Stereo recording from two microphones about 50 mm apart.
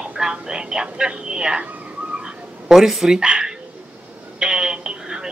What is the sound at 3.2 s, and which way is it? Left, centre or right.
Speech, right.